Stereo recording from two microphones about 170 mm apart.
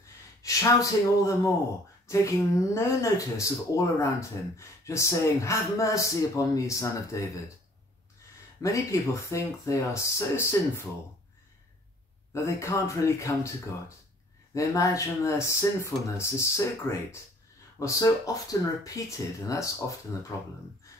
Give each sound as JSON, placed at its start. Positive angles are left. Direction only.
{"t": 0.0, "sound": "gasp", "side_deg": 20}
{"t": 2.0, "sound": "speech", "side_deg": 15}
{"t": 8.6, "sound": "speech", "side_deg": 20}
{"t": 12.3, "sound": "speech", "side_deg": 15}